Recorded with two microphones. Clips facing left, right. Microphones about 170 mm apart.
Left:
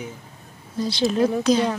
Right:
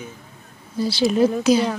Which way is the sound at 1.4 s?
5° right (ahead or behind).